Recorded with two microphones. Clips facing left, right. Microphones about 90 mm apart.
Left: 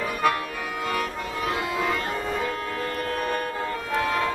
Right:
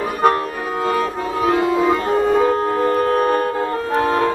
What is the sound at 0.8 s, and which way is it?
Music, 35° right (ahead or behind).